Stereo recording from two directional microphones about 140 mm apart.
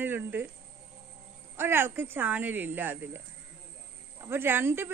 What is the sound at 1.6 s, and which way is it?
A woman's voice, 15° right (ahead or behind).